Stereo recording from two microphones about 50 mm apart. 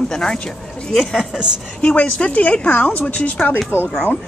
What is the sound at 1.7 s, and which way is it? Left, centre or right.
Speech, left.